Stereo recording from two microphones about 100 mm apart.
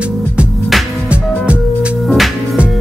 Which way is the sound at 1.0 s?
10° right (ahead or behind).